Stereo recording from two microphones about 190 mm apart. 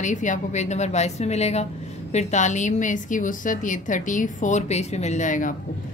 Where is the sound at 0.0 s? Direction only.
40° left (ahead or behind).